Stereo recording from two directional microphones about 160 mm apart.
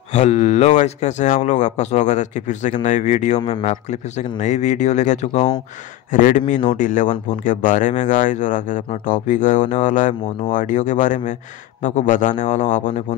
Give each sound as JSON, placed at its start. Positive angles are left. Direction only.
{"t": 0.1, "sound": "speech", "side_deg": 45}